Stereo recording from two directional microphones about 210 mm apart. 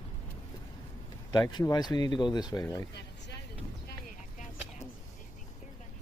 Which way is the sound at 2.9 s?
55° left (ahead or behind).